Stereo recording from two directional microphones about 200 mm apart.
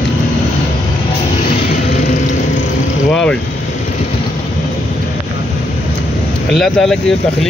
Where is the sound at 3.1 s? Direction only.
5° left (ahead or behind).